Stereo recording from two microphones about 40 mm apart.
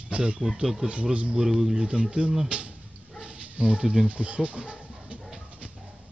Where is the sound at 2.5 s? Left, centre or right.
Right.